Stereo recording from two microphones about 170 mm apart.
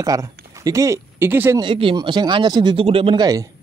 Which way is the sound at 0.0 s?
20° right (ahead or behind).